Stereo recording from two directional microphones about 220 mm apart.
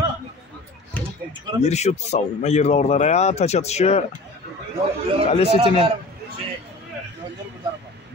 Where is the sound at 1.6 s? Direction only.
30° left (ahead or behind).